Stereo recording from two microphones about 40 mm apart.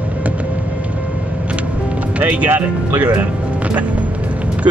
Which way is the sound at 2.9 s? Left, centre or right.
Right.